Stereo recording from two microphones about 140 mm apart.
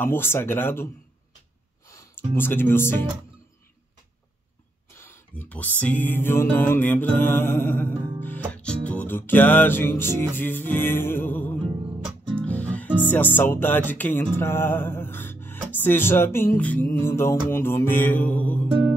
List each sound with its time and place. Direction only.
0.0 s music: 15° left (ahead or behind)
1.9 s speech: 20° left (ahead or behind)
4.9 s music: 15° left (ahead or behind)